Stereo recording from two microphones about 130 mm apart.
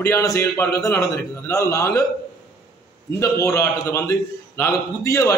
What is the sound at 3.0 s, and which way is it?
A man's voice, 25° left (ahead or behind).